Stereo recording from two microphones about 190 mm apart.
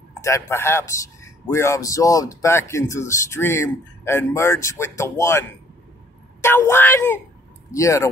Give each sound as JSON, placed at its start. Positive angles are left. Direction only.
{"t": 0.2, "sound": "a man's voice", "side_deg": 15}